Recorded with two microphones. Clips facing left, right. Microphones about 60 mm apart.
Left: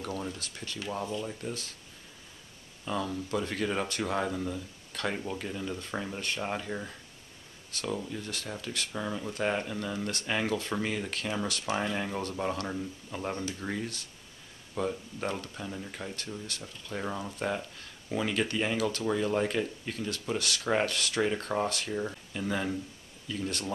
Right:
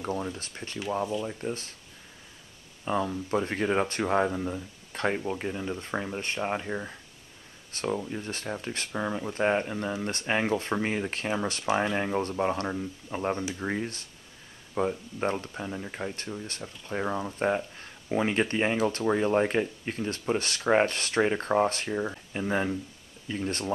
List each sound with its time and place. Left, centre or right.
0.0 s speech: right
2.8 s speech: right